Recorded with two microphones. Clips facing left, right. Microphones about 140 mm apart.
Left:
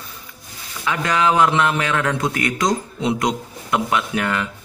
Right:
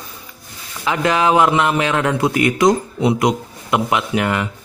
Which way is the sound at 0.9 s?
20° right (ahead or behind).